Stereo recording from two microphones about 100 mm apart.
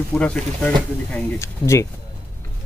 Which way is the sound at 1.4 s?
30° left (ahead or behind).